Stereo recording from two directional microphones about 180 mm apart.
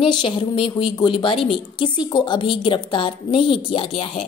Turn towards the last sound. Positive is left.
turn(degrees=30)  # may be behind; listen again after turning